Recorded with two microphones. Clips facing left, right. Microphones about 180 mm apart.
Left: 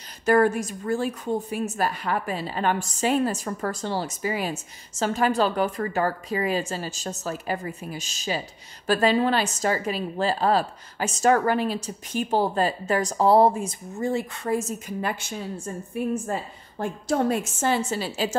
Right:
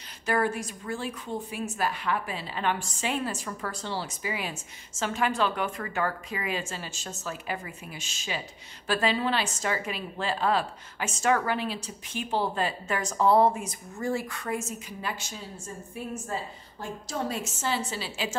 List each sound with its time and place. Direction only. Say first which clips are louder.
0.2 s a woman's voice: left 8 dB; 45° left (ahead or behind)
14.9 s a woman's voice: left 7 dB; 55° left (ahead or behind)